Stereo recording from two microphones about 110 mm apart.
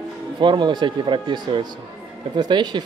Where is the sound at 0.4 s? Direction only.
45° right (ahead or behind).